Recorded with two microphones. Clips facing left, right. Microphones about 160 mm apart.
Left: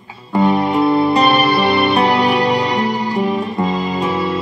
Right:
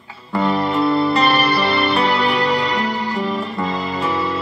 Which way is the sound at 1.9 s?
40° left (ahead or behind).